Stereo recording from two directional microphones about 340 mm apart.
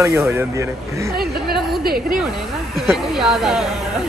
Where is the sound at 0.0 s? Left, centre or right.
Centre.